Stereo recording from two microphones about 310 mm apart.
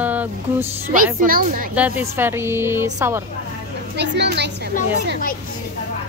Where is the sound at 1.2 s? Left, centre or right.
Right.